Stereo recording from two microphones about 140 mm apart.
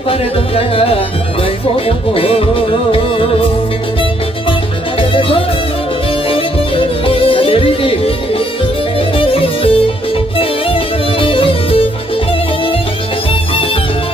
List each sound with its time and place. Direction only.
0.1 s music: 40° left (ahead or behind)
6.2 s music: 40° left (ahead or behind)
9.1 s music: 40° left (ahead or behind)